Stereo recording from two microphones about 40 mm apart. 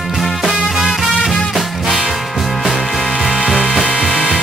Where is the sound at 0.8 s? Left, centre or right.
Centre.